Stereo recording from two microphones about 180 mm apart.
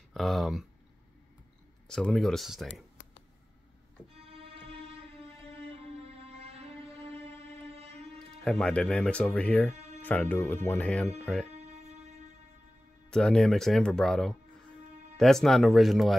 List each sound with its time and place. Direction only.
0.1 s speech: centre (ahead or behind)
1.9 s speech: 5° left (ahead or behind)
4.1 s organ: 35° right (ahead or behind)
5.7 s music: 35° right (ahead or behind)
7.7 s a sound: 35° right (ahead or behind)
8.5 s speech: 5° left (ahead or behind)
11.5 s music: 40° right (ahead or behind)
13.1 s speech: 5° left (ahead or behind)